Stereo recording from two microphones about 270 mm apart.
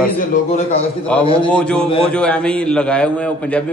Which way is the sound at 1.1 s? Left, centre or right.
Centre.